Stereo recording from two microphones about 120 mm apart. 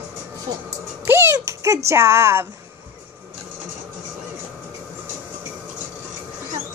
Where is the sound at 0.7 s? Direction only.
20° right (ahead or behind).